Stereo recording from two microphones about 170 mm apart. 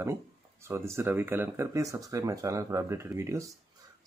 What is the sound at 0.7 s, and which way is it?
Speech, 15° right (ahead or behind).